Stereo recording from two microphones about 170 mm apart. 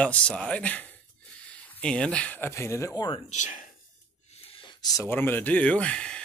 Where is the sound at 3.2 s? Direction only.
45° left (ahead or behind).